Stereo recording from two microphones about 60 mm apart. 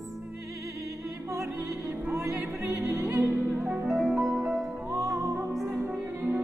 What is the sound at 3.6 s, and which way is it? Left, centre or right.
Music, centre.